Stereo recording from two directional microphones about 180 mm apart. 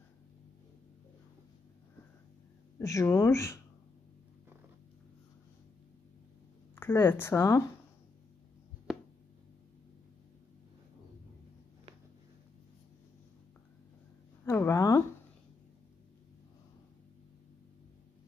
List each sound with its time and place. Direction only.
2.8 s speech: 15° left (ahead or behind)
6.7 s speech: 10° left (ahead or behind)
14.4 s a sound: 15° left (ahead or behind)